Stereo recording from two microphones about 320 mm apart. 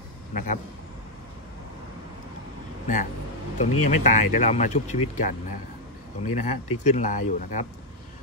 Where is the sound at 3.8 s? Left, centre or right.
Left.